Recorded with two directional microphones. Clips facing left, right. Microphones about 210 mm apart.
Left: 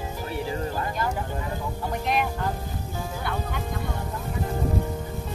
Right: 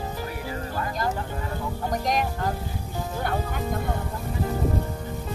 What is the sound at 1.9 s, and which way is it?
Speech, 40° right (ahead or behind).